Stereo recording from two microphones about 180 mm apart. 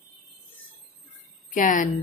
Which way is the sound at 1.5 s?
45° left (ahead or behind).